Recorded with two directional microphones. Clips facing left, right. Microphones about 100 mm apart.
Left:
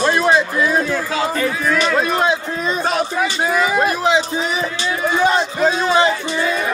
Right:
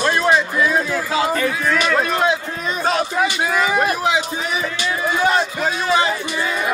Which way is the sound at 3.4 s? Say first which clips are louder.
Left 4 dB; 25° left (ahead or behind).